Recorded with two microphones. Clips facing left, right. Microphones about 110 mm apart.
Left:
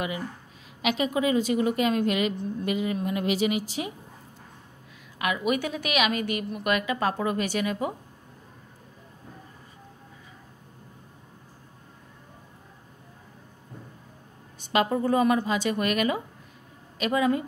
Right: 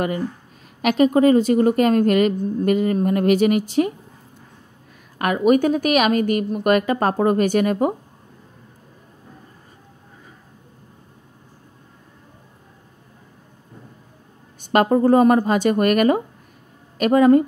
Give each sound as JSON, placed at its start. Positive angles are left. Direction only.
{"t": 0.8, "sound": "a woman's voice", "side_deg": -45}
{"t": 5.2, "sound": "a woman's voice", "side_deg": -45}
{"t": 14.6, "sound": "a woman's voice", "side_deg": -50}